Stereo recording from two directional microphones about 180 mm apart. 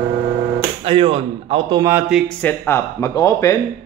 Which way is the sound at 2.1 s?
5° left (ahead or behind).